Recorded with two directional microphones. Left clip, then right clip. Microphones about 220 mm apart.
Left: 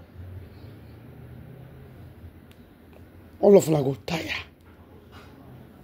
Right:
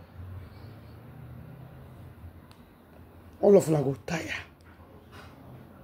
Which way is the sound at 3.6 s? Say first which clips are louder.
Left 3 dB; 30° left (ahead or behind).